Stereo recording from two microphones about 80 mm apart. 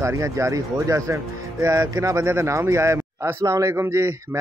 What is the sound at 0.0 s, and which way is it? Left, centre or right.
Speech, right.